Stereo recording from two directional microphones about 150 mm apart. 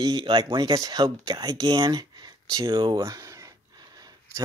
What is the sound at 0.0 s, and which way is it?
Speech, 30° right (ahead or behind).